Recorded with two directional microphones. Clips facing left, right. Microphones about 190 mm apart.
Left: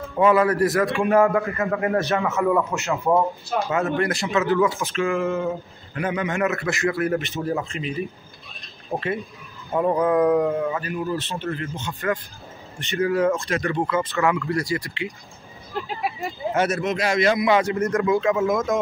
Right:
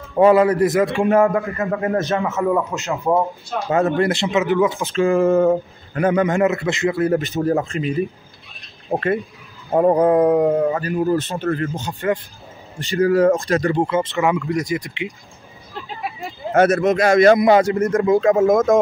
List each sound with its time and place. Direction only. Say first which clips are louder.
0.2 s a man's voice: right 5 dB; 25° right (ahead or behind)
3.7 s speech: right 7 dB; 35° right (ahead or behind)
4.9 s a man's voice: right 8 dB; 35° right (ahead or behind)
6.4 s speech: right 5 dB; 20° right (ahead or behind)
7.2 s speech: right 6 dB; 40° right (ahead or behind)
8.9 s a man's voice: right 6 dB; 55° right (ahead or behind)
9.7 s speech: right 6 dB; 40° right (ahead or behind)
10.1 s speech: right 4 dB; 30° right (ahead or behind)
15.7 s vehicle: left 2 dB; centre (ahead or behind)
16.8 s speech: right 8 dB; 50° right (ahead or behind)
18.5 s a man's voice: right 7 dB; 50° right (ahead or behind)